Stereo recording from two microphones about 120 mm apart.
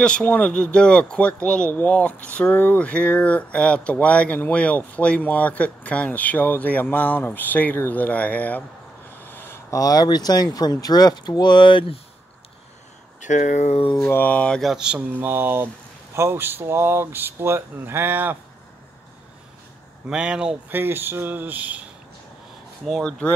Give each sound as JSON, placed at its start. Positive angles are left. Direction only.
{"t": 0.0, "sound": "speech", "side_deg": 10}
{"t": 13.2, "sound": "speech", "side_deg": 90}
{"t": 14.0, "sound": "mantra", "side_deg": 15}
{"t": 16.2, "sound": "speech", "side_deg": -20}
{"t": 20.1, "sound": "mantra", "side_deg": -5}
{"t": 20.8, "sound": "mantra", "side_deg": -20}
{"t": 22.8, "sound": "speech", "side_deg": 5}